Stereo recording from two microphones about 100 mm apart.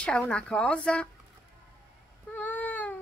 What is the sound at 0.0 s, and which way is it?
Speech, 10° left (ahead or behind).